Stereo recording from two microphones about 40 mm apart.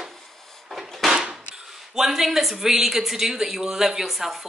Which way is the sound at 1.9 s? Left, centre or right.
Centre.